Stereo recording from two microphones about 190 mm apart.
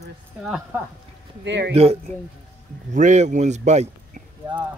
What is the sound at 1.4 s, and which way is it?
Speech, 70° right (ahead or behind).